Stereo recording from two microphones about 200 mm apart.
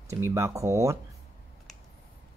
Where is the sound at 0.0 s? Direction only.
15° right (ahead or behind).